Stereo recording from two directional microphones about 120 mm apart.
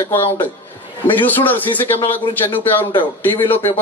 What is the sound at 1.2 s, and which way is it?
A man's voice, 15° left (ahead or behind).